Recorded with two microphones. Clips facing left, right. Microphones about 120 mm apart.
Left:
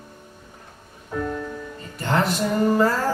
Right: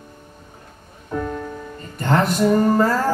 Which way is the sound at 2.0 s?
45° right (ahead or behind).